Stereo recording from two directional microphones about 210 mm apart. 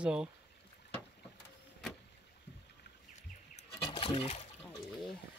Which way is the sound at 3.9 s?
25° left (ahead or behind).